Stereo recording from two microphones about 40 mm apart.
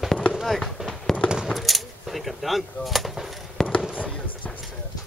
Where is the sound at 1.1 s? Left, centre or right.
Left.